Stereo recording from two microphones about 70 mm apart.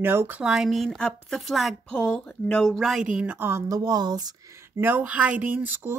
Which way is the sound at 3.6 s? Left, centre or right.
Right.